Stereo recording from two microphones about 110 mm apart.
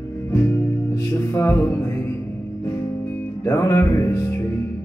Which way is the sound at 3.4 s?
30° left (ahead or behind).